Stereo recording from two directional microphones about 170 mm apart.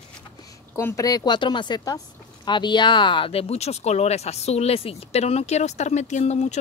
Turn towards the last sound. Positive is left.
turn(degrees=40)  # may be behind; listen again after turning